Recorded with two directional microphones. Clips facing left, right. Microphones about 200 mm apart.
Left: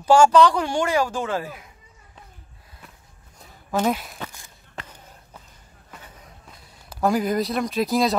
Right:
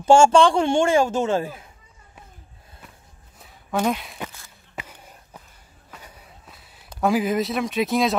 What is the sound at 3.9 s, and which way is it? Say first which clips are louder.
Speech: left 1 dB; centre (ahead or behind).